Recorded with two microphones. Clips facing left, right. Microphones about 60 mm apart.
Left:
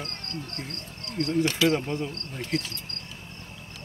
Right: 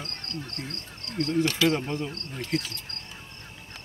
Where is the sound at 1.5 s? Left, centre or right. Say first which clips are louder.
Left 1 dB; centre.